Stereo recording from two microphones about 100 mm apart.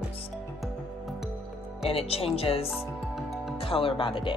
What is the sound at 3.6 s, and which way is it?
Speech, 65° left (ahead or behind).